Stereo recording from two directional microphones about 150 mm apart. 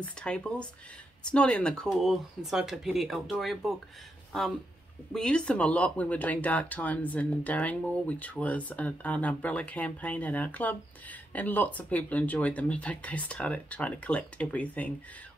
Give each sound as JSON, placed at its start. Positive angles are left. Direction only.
{"t": 0.0, "sound": "speech", "side_deg": 10}
{"t": 5.1, "sound": "speech", "side_deg": 5}